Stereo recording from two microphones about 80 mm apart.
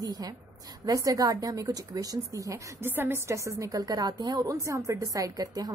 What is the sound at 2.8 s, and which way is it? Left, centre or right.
A woman's voice, right.